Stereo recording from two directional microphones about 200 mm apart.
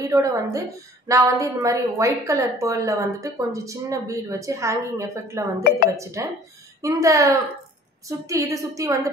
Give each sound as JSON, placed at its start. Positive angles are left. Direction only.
{"t": 0.0, "sound": "a woman's voice", "side_deg": -15}